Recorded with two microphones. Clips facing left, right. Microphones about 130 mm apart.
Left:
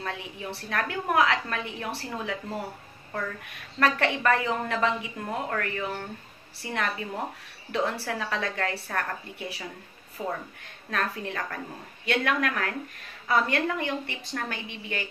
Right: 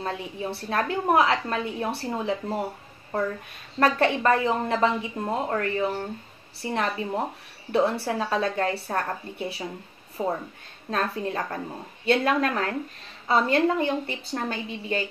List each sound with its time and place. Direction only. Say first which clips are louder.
0.0 s a woman's voice: right 5 dB; 30° right (ahead or behind)
3.8 s a woman's voice: right 3 dB; 30° right (ahead or behind)